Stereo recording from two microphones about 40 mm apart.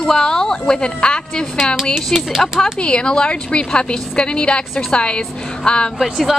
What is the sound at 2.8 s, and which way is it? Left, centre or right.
A woman's voice, left.